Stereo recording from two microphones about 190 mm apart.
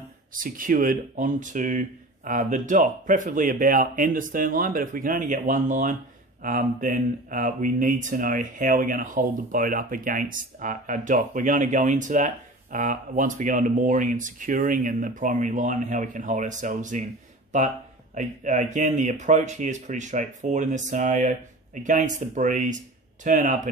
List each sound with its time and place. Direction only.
0.3 s speech: 45° right (ahead or behind)
18.1 s speech: 40° right (ahead or behind)